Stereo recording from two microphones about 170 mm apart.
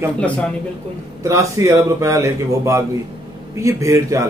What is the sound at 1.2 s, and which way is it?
A man's voice, 15° right (ahead or behind).